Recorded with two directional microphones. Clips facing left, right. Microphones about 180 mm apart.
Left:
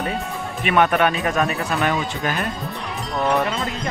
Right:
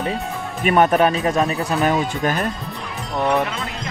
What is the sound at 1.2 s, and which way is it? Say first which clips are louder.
Speech: right 2 dB; 25° right (ahead or behind).